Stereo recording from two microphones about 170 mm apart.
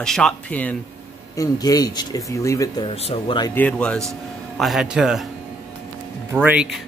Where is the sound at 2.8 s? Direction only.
35° left (ahead or behind).